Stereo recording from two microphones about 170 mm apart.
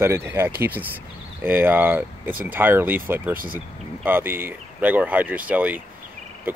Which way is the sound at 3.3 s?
55° right (ahead or behind).